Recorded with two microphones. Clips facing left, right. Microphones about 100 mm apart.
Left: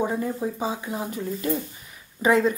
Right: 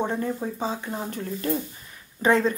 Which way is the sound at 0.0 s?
5° left (ahead or behind).